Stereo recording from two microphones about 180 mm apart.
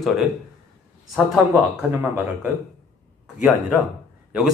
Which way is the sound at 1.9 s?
10° right (ahead or behind).